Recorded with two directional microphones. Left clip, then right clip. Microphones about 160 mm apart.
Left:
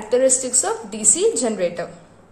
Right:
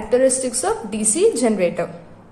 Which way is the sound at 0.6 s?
Centre (ahead or behind).